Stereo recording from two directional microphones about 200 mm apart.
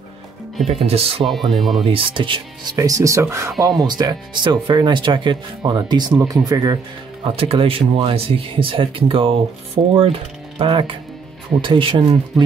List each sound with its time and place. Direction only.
0.7 s speech: 30° right (ahead or behind)
1.2 s speech: centre (ahead or behind)
1.9 s speech: 25° right (ahead or behind)
10.6 s speech: 25° right (ahead or behind)